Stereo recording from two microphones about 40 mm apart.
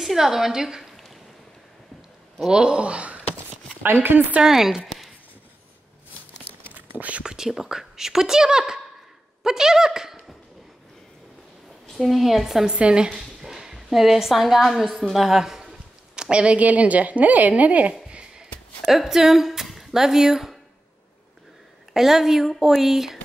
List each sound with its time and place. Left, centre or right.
0.0 s speech: centre
0.8 s a sound: centre
2.5 s speech: right
3.8 s speech: right
4.4 s speech: centre
6.7 s whispering: right
7.2 s speech: centre
11.9 s a woman's voice: centre
12.7 s speech: right
13.2 s a woman's voice: centre
16.2 s a woman's voice: right
18.9 s speech: centre
21.9 s speech: centre